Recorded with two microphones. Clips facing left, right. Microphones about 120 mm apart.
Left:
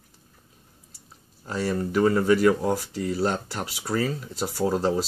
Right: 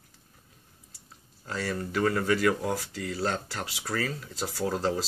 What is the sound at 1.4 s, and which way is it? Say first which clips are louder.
Speech: left 6 dB; 20° left (ahead or behind).